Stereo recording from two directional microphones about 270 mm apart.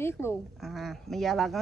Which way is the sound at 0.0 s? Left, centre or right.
Centre.